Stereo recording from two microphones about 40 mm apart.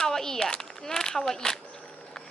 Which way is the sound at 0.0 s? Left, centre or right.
Centre.